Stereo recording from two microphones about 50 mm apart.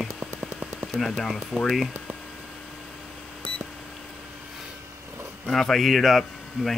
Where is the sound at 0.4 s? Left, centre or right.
Right.